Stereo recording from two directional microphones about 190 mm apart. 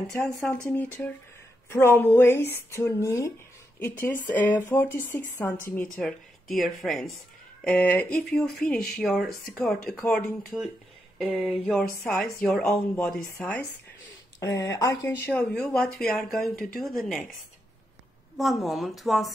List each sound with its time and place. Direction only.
0.2 s speech: centre (ahead or behind)
14.4 s speech: 15° left (ahead or behind)
15.2 s speech: 5° left (ahead or behind)
18.4 s speech: centre (ahead or behind)